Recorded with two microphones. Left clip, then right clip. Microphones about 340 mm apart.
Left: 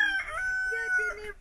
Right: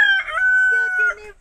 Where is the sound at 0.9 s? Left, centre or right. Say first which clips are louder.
Right 10 dB; right.